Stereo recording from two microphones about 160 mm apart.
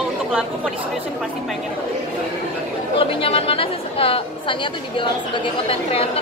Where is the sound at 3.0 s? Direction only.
35° left (ahead or behind).